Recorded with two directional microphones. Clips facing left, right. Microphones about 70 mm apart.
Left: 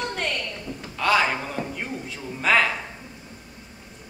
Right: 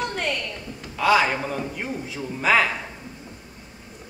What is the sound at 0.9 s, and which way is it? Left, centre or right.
A man's voice, centre.